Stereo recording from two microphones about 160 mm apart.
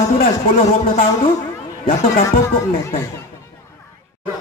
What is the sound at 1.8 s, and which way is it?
Speech, 60° left (ahead or behind).